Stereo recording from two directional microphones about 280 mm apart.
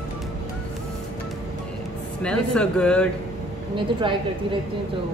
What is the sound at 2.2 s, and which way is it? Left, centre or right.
Speech, centre.